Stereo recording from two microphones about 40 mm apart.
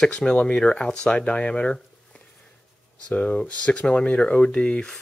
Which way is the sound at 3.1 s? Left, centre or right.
Left.